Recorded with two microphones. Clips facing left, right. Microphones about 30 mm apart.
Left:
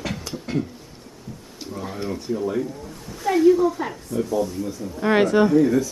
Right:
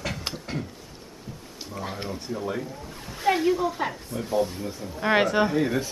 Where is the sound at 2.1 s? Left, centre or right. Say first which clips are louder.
Left 8 dB; centre.